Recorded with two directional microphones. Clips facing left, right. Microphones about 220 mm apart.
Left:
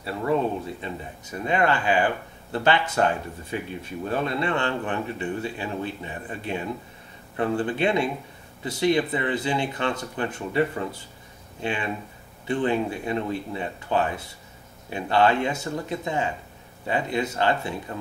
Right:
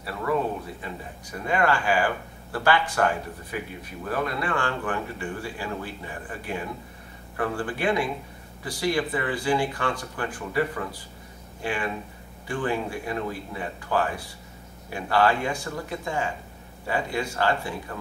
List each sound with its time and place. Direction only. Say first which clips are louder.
0.0 s speech: left 2 dB; 25° left (ahead or behind)